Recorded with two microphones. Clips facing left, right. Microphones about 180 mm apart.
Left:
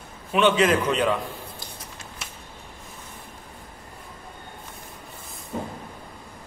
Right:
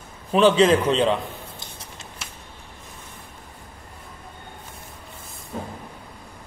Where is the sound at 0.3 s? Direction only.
35° right (ahead or behind).